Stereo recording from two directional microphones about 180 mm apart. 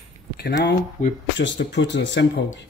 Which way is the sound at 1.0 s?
45° left (ahead or behind).